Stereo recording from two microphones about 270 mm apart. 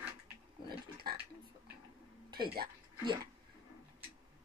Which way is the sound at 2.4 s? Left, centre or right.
Right.